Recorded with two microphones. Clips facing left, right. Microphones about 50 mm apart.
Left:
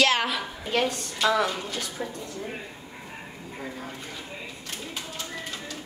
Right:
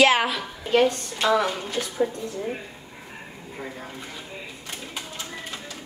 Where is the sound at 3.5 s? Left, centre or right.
Centre.